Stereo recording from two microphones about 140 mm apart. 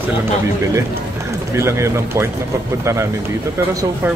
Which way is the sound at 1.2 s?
20° right (ahead or behind).